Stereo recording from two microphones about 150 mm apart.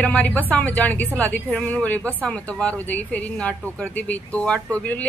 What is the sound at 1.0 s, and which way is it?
Speech, 20° right (ahead or behind).